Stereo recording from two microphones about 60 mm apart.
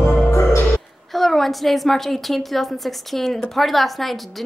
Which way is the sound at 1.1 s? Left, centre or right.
Centre.